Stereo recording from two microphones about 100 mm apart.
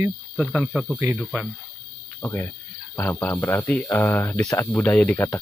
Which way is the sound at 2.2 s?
20° left (ahead or behind).